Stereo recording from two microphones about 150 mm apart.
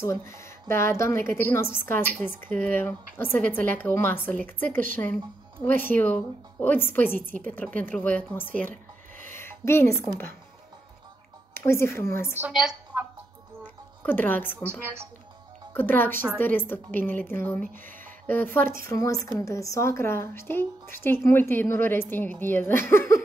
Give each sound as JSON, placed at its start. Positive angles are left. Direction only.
{"t": 0.0, "sound": "speech", "side_deg": 20}
{"t": 5.9, "sound": "speech", "side_deg": 10}
{"t": 9.2, "sound": "a sound", "side_deg": 15}
{"t": 11.5, "sound": "speech", "side_deg": 15}
{"t": 12.4, "sound": "a woman's voice", "side_deg": -5}
{"t": 14.0, "sound": "speech", "side_deg": 10}
{"t": 14.6, "sound": "a woman's voice", "side_deg": -15}
{"t": 15.7, "sound": "a woman's voice", "side_deg": 15}